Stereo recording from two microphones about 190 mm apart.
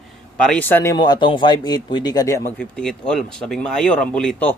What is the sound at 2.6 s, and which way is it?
Speech, 5° left (ahead or behind).